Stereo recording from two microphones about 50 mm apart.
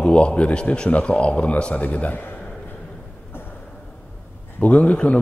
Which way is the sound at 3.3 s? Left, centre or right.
Left.